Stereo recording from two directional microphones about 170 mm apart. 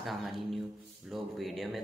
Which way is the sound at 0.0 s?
Centre (ahead or behind).